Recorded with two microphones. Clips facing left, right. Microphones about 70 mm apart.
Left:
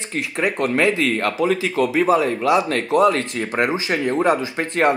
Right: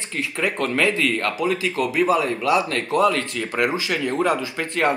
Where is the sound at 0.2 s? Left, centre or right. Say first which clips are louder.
Left 2 dB; left.